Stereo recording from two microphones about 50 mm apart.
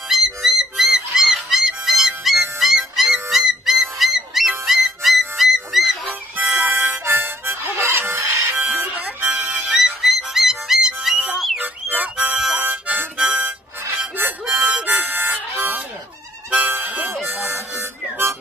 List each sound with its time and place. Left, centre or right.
0.1 s music: centre
6.3 s music: right
6.9 s harmonica: right
8.5 s music: right
9.7 s music: centre
11.3 s a sound: centre
11.6 s music: right
12.5 s harmonica: right
13.2 s music: right
14.5 s harmonica: right
15.5 s a sound: right
16.6 s harmonica: right
17.3 s music: right